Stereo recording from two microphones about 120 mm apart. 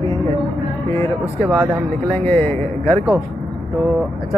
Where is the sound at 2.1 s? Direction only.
15° left (ahead or behind).